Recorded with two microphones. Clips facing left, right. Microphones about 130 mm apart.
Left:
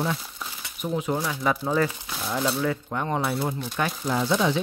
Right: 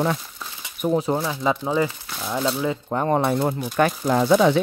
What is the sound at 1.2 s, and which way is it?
Speech, 20° right (ahead or behind).